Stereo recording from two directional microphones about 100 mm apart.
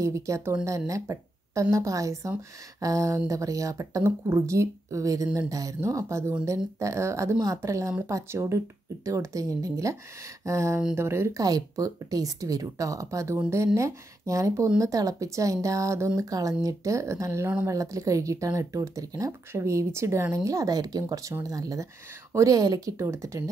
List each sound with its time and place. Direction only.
0.0 s speech: 30° right (ahead or behind)